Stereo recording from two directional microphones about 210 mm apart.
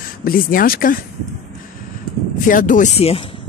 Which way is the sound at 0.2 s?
45° left (ahead or behind).